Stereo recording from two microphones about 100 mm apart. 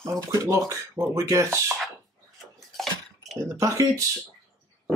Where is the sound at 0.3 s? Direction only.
30° right (ahead or behind).